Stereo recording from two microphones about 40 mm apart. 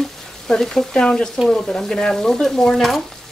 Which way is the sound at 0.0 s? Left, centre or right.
Centre.